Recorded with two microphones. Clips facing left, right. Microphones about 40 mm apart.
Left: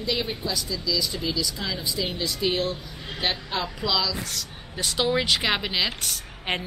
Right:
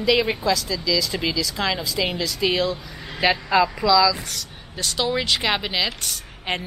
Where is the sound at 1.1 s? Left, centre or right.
Right.